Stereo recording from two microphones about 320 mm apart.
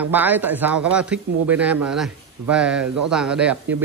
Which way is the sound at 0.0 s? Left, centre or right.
Centre.